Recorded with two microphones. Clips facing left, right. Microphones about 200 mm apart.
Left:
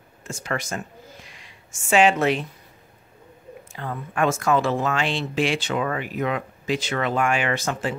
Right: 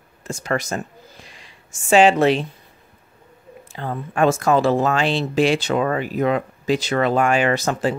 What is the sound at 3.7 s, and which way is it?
Speech, 30° right (ahead or behind).